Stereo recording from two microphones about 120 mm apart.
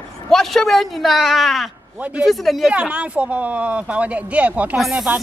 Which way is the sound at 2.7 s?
10° right (ahead or behind).